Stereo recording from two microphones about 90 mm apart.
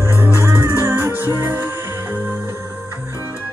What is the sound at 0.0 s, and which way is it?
Music, 25° right (ahead or behind).